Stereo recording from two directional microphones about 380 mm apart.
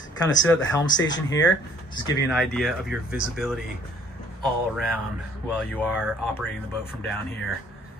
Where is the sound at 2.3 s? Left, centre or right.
Centre.